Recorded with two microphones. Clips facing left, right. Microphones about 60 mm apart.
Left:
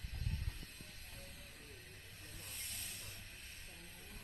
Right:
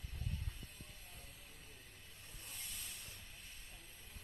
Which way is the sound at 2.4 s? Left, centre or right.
Left.